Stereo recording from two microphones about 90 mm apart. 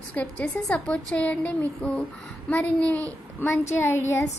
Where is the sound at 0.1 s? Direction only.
15° left (ahead or behind).